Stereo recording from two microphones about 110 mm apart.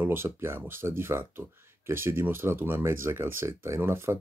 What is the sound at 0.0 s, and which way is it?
Speech, 20° right (ahead or behind).